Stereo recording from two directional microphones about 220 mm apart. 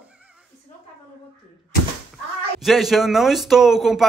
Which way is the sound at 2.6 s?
Centre (ahead or behind).